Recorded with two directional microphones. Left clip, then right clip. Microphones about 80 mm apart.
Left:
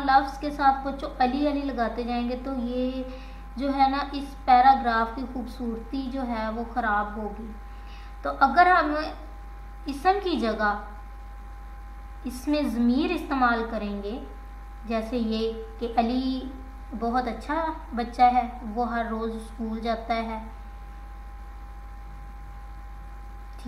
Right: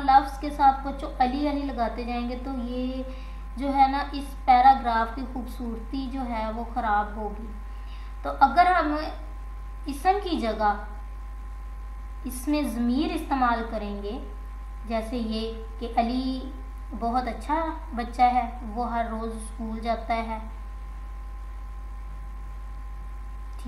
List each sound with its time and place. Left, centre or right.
0.0 s music: left
8.2 s music: left
12.3 s music: left
14.9 s music: left
17.0 s a woman's voice: left